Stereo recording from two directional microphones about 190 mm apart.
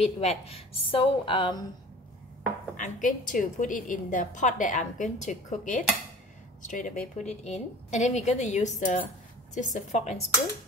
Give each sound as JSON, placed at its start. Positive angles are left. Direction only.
{"t": 0.0, "sound": "a woman's voice", "side_deg": 35}
{"t": 2.7, "sound": "a woman's voice", "side_deg": 45}